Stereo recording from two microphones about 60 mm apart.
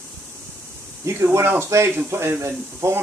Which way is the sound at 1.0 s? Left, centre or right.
Right.